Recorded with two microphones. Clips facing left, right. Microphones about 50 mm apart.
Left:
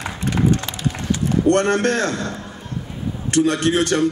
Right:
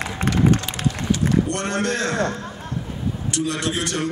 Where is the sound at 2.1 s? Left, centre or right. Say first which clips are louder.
Right 2 dB; right.